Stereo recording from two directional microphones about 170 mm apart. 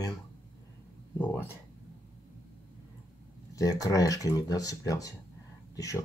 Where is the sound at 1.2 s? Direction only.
10° left (ahead or behind).